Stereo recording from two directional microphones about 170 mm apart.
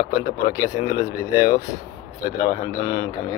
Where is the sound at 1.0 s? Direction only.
20° left (ahead or behind).